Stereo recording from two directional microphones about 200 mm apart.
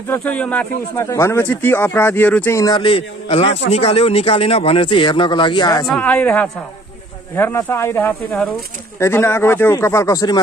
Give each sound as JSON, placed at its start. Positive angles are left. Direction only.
{"t": 0.1, "sound": "speech", "side_deg": 5}
{"t": 5.9, "sound": "speech", "side_deg": 5}